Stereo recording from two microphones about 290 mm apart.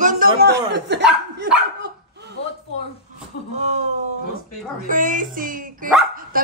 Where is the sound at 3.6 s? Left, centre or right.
Right.